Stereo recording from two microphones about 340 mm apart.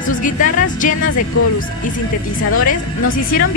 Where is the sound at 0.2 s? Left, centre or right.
Left.